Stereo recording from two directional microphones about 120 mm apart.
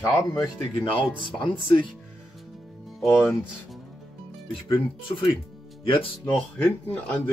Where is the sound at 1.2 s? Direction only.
40° left (ahead or behind).